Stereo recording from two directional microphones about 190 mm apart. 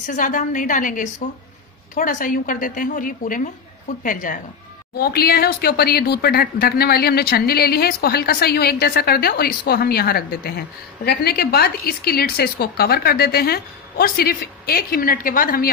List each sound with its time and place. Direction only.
0.0 s a woman's voice: 45° left (ahead or behind)